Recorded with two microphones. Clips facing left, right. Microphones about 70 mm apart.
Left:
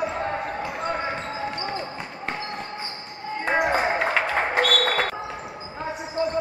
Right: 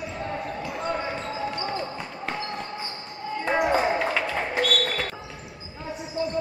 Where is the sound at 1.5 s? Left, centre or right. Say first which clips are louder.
Even; centre; by 5.1 s left.